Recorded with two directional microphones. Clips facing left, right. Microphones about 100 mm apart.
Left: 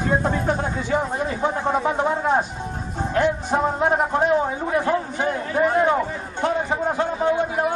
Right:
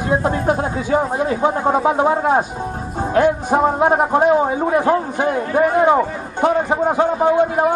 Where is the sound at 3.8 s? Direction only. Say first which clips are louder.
Right 5 dB; 20° right (ahead or behind).